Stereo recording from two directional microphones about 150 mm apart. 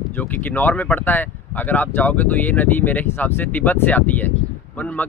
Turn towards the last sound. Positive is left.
turn(degrees=10)  # may be behind; listen again after turning